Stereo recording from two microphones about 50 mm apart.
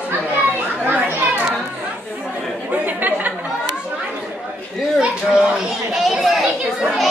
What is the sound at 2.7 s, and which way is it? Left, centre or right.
Chatter, right.